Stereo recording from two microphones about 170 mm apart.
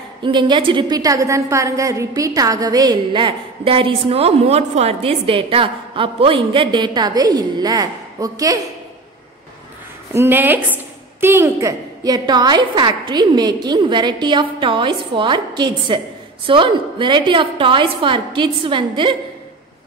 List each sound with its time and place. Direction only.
0.2 s a woman's voice: 30° right (ahead or behind)
10.1 s a woman's voice: 15° right (ahead or behind); by 19.1 s 30° right (ahead or behind)